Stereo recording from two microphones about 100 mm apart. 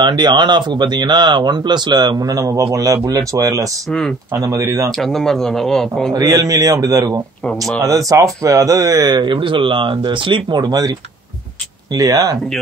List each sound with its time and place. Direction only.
0.0 s a man's voice: 45° right (ahead or behind)
4.6 s a man's voice: 30° right (ahead or behind)
4.9 s speech: 5° left (ahead or behind)
6.1 s a man's voice: 35° right (ahead or behind)
7.4 s speech: 5° left (ahead or behind)
7.8 s speech: 35° right (ahead or behind)
11.9 s a man's voice: 35° right (ahead or behind)